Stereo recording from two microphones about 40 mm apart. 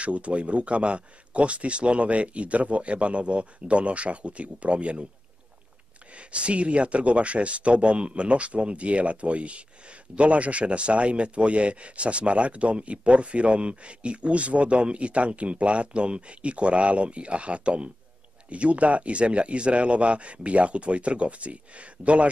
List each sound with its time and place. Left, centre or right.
0.0 s speech: right
6.1 s speech: right